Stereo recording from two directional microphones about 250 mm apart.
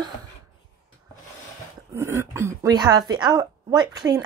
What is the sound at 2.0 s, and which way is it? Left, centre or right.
Speech, centre.